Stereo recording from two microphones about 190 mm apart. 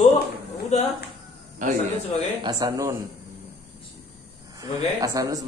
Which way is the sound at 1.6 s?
40° right (ahead or behind).